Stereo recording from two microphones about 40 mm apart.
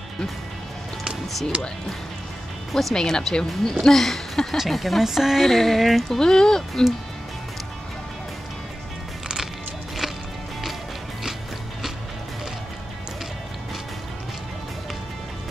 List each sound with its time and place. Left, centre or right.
2.7 s speech: centre
3.7 s speech: centre
4.6 s female singing: centre
5.0 s speech: centre
5.4 s female singing: centre
6.0 s speech: centre